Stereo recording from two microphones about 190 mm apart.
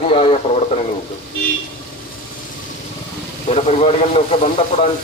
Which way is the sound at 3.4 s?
35° left (ahead or behind).